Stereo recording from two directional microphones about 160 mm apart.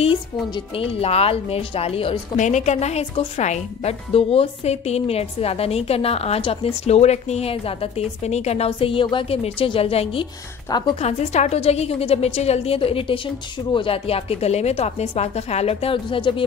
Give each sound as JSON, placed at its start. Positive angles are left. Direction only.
{"t": 0.7, "sound": "speech", "side_deg": 35}
{"t": 2.3, "sound": "speech", "side_deg": 50}